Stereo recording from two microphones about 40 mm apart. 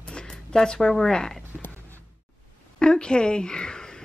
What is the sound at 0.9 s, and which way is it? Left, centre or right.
Speech, centre.